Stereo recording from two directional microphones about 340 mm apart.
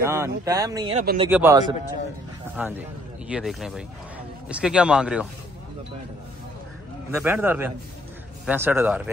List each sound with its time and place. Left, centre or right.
0.0 s speech: centre
7.1 s speech: centre